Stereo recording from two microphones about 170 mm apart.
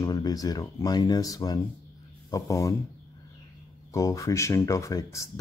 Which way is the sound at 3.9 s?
20° left (ahead or behind).